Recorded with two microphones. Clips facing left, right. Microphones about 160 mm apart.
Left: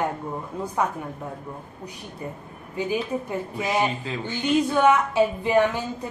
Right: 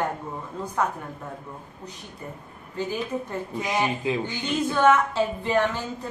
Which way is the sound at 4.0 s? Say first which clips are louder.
Right 4 dB; 15° right (ahead or behind).